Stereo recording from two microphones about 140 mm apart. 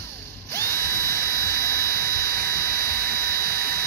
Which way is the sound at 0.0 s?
20° left (ahead or behind).